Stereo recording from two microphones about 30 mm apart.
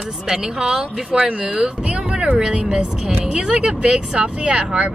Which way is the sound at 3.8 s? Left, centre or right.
Right.